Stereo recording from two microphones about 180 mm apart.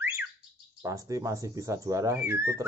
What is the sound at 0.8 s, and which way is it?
Speech, 20° right (ahead or behind).